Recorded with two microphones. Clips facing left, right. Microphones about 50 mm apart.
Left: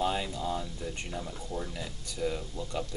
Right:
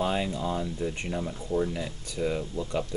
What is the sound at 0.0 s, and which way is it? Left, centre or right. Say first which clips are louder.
Speech: right 3 dB; right.